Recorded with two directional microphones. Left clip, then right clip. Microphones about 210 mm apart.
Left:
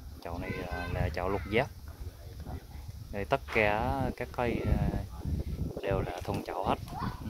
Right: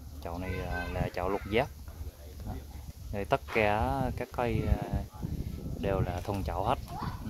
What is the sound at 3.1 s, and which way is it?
Speech, centre (ahead or behind).